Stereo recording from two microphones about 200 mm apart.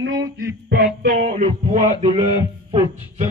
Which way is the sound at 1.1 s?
35° right (ahead or behind).